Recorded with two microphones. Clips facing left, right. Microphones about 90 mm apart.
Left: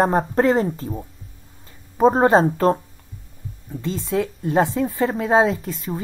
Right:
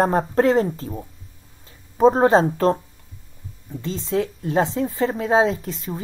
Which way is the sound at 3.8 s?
50° left (ahead or behind).